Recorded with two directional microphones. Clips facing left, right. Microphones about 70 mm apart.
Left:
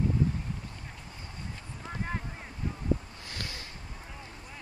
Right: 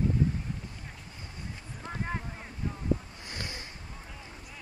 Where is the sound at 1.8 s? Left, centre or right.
Centre.